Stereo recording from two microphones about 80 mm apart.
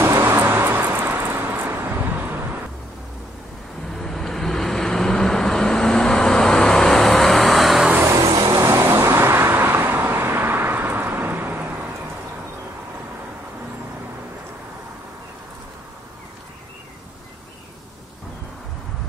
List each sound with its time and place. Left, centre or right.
0.0 s vehicle: right
3.9 s vehicle: centre
8.0 s vehicle: right
8.3 s vehicle: right
8.6 s vehicle: right